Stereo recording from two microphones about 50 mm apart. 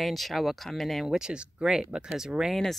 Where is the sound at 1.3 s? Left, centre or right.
Centre.